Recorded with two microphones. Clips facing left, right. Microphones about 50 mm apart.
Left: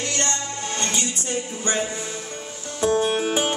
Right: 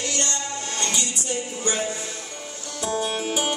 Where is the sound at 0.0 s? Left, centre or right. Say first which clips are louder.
Left 2 dB; left.